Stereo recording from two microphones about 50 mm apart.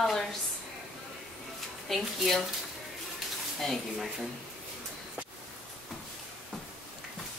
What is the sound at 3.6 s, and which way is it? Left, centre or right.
Speech, centre.